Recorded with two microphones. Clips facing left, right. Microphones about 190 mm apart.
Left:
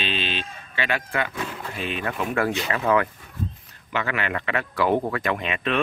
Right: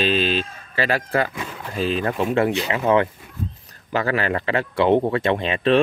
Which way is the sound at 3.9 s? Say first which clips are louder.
Right 5 dB; 35° right (ahead or behind).